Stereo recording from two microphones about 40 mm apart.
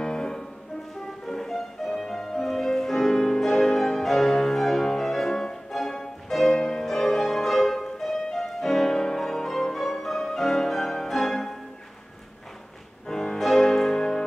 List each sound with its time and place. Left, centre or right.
0.0 s music: centre
13.1 s music: centre